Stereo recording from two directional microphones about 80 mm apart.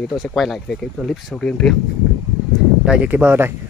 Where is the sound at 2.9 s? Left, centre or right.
Centre.